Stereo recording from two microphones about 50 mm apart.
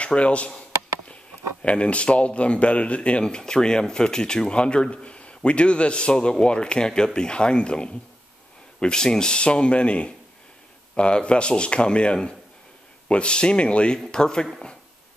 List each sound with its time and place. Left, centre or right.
0.0 s speech: left
1.6 s speech: left